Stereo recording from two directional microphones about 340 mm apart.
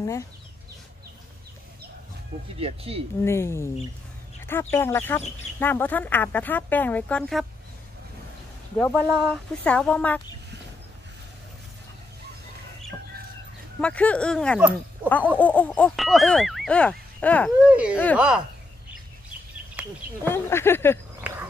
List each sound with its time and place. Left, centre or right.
2.6 s speech: centre
3.2 s speech: centre
8.7 s speech: centre
13.7 s speech: centre
19.8 s a sound: centre
20.2 s speech: centre